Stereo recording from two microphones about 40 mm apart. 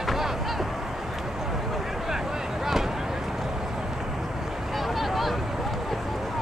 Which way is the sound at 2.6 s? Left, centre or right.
Centre.